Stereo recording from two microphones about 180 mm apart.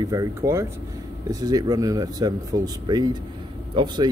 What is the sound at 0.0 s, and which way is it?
Speech, 20° right (ahead or behind).